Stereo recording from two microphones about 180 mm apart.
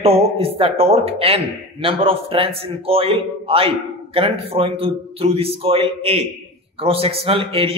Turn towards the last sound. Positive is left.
turn(degrees=-30)  # may be behind; listen again after turning